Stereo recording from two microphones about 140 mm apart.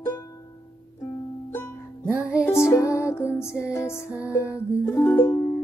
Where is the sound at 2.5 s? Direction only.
20° left (ahead or behind).